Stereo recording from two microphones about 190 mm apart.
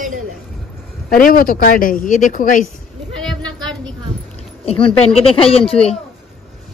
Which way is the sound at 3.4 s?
25° right (ahead or behind).